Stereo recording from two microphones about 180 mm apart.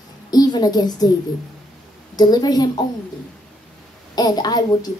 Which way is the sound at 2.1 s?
20° left (ahead or behind).